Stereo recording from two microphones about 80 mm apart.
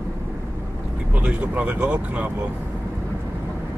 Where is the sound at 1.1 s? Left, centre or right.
Centre.